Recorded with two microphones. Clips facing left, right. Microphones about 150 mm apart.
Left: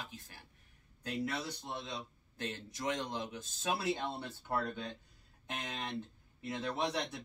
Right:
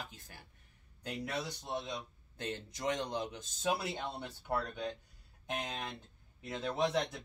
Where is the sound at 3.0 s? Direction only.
20° right (ahead or behind).